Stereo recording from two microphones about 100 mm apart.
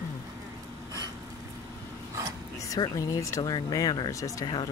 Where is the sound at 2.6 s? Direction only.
40° left (ahead or behind).